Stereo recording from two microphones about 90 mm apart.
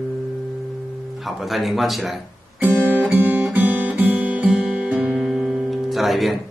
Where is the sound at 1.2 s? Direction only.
Centre (ahead or behind).